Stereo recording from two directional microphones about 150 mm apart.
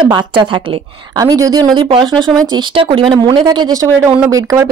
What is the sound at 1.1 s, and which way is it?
A woman's voice, 25° right (ahead or behind).